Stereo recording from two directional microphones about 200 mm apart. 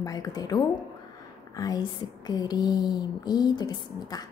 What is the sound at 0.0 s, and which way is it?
A woman's voice, 20° left (ahead or behind).